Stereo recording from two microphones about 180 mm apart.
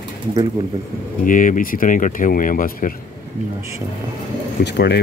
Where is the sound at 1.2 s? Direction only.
45° left (ahead or behind).